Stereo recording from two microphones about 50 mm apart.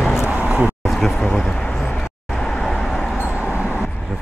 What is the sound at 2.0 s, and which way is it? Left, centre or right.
Vehicle, centre.